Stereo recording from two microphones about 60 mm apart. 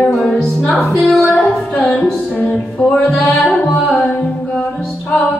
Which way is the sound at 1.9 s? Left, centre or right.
Centre.